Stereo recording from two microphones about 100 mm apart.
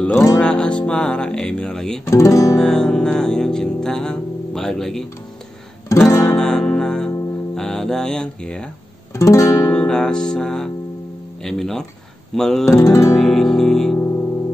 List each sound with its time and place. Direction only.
0.4 s music: 10° left (ahead or behind)
2.0 s music: 30° left (ahead or behind)
2.5 s music: 5° left (ahead or behind)
5.9 s music: 30° left (ahead or behind)
6.3 s music: 5° left (ahead or behind)
9.1 s music: 30° left (ahead or behind)
9.8 s music: 5° left (ahead or behind)
12.7 s music: 35° left (ahead or behind)
13.1 s music: 5° left (ahead or behind)
13.9 s music: 25° left (ahead or behind)